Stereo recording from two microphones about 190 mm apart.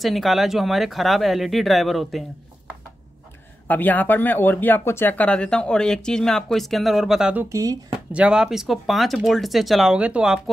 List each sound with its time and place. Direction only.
0.0 s speech: centre (ahead or behind)
3.6 s speech: 10° left (ahead or behind)
7.4 s speech: 15° right (ahead or behind)
8.1 s speech: 5° right (ahead or behind)